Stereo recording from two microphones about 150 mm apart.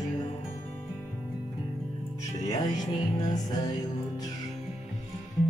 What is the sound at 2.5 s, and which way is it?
Music, 25° left (ahead or behind).